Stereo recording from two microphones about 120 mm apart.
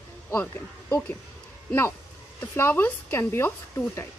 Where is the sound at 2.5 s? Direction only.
15° left (ahead or behind).